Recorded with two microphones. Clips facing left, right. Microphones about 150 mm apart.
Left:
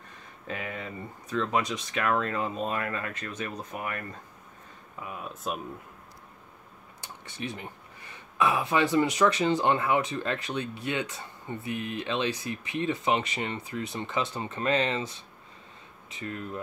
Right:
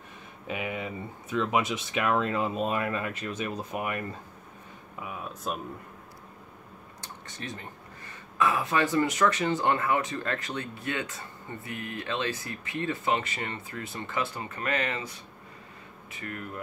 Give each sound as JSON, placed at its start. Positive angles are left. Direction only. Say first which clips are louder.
{"t": 0.5, "sound": "speech", "louder": "right 3 dB", "side_deg": -10}
{"t": 5.0, "sound": "speech", "louder": "even", "side_deg": 0}
{"t": 7.3, "sound": "speech", "louder": "left 4 dB", "side_deg": 15}